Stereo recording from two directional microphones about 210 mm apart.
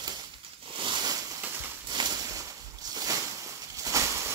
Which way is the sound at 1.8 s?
20° right (ahead or behind).